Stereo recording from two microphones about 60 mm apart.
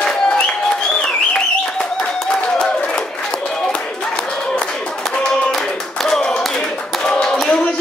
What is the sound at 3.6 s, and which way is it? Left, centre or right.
Clapping, centre.